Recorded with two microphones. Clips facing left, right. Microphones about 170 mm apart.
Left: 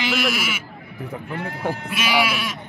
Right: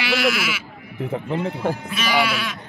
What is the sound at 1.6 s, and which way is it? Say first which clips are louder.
Speech: right 1 dB; 10° left (ahead or behind).